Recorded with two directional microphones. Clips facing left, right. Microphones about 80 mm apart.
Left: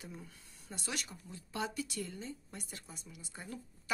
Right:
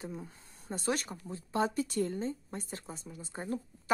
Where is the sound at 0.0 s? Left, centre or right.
Right.